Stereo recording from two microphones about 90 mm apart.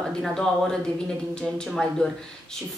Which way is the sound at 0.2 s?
5° left (ahead or behind).